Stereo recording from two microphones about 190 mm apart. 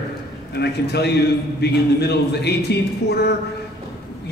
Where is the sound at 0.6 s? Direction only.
60° left (ahead or behind).